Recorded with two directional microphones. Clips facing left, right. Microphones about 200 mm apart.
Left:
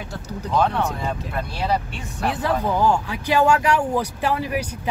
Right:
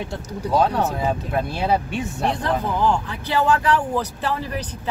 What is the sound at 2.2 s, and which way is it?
Speech, 5° left (ahead or behind).